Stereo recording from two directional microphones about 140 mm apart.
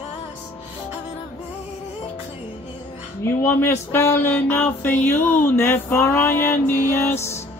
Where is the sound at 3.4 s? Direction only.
20° left (ahead or behind).